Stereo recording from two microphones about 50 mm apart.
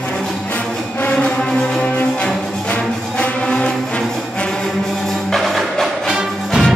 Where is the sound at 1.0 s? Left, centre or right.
Left.